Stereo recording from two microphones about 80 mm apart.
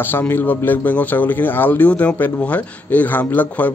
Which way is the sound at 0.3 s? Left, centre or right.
Left.